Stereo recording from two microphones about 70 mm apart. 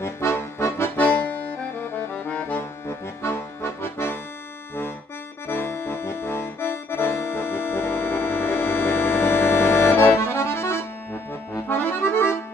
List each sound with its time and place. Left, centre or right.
0.0 s accordion: left
1.0 s accordion: left
3.8 s accordion: left
5.5 s accordion: left